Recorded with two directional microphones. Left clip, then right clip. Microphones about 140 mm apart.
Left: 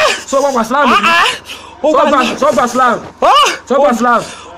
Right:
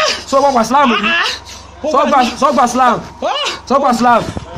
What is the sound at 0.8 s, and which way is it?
Speech, 50° left (ahead or behind).